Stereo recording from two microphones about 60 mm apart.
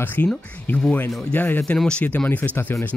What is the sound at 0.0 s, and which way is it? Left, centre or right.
Speech, left.